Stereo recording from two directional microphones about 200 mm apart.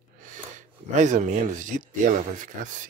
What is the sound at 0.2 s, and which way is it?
Speech, 40° right (ahead or behind).